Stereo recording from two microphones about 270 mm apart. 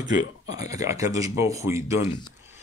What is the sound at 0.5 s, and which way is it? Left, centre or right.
Speech, centre.